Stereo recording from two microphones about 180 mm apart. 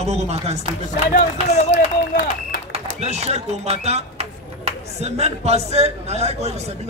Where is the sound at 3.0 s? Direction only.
35° right (ahead or behind).